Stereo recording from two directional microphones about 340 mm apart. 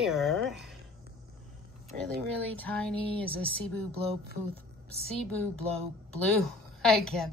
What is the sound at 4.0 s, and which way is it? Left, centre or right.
Speech, centre.